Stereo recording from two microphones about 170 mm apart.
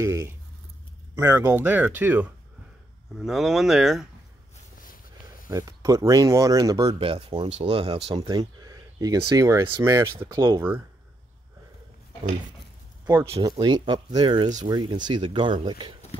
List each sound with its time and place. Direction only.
0.0 s speech: 15° right (ahead or behind); by 4.1 s centre (ahead or behind)
5.5 s speech: 20° right (ahead or behind)
13.0 s speech: 20° right (ahead or behind)